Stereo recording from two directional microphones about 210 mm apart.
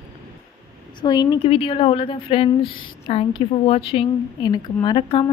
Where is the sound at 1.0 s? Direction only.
20° left (ahead or behind).